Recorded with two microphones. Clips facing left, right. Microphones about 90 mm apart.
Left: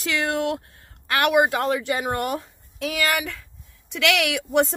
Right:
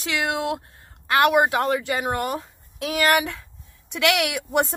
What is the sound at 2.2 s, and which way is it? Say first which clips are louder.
Speech: even; 35° right (ahead or behind).